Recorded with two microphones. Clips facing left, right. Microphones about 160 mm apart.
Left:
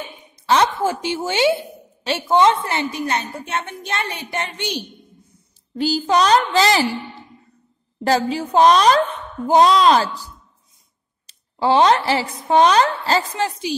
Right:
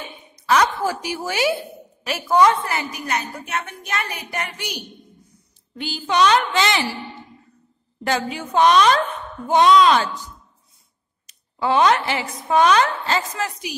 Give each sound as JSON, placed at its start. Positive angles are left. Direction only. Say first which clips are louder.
{"t": 0.5, "sound": "a woman's voice", "louder": "left 1 dB", "side_deg": 25}
{"t": 8.0, "sound": "a woman's voice", "louder": "left 5 dB", "side_deg": 35}